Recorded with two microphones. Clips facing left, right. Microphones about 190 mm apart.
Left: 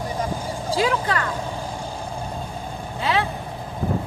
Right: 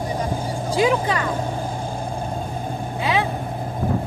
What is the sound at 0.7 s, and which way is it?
Speech, 20° right (ahead or behind).